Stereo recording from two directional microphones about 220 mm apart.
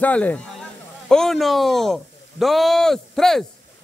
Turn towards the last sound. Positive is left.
turn(degrees=0)  # may be behind; listen again after turning